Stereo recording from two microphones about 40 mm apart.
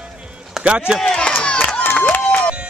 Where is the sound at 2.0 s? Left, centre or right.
Left.